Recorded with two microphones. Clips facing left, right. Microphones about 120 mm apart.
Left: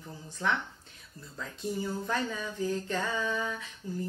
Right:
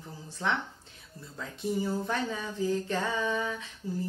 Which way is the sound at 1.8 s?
25° right (ahead or behind).